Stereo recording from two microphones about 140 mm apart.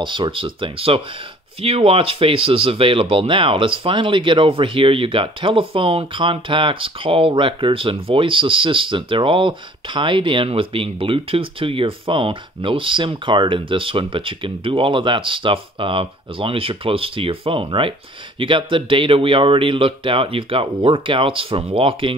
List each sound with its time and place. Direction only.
0.0 s speech: 35° right (ahead or behind)